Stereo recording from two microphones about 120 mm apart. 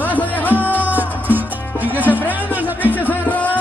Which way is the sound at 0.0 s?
15° left (ahead or behind).